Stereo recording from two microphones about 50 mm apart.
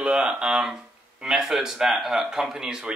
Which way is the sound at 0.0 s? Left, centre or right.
Centre.